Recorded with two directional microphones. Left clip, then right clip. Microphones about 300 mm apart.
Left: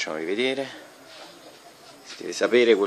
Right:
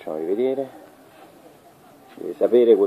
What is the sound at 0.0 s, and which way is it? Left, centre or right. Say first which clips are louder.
Speech: right 2 dB; left.